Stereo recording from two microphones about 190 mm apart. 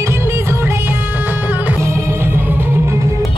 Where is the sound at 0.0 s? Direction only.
10° right (ahead or behind).